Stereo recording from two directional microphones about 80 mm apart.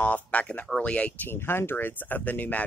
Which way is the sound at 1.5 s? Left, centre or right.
Left.